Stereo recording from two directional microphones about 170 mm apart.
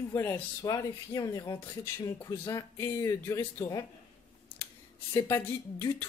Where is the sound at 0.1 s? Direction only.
15° left (ahead or behind).